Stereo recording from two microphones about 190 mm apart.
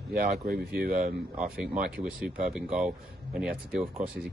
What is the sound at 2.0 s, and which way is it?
Speech, 5° right (ahead or behind).